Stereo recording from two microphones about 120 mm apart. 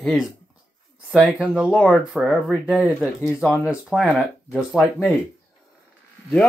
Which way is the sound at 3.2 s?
20° left (ahead or behind).